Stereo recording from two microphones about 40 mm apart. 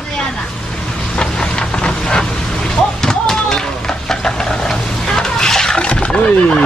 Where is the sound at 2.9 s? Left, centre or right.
Centre.